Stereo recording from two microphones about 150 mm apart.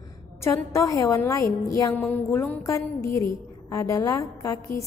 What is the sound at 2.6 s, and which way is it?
A woman's voice, 20° left (ahead or behind).